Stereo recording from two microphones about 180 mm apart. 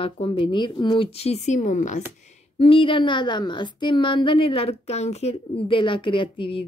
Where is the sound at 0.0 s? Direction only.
30° left (ahead or behind).